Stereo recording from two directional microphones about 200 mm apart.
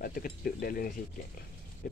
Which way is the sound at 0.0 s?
45° left (ahead or behind).